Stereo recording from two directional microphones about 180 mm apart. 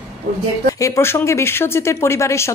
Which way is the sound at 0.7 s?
15° left (ahead or behind).